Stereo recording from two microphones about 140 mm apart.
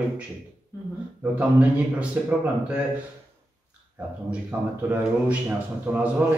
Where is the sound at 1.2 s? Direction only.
10° right (ahead or behind).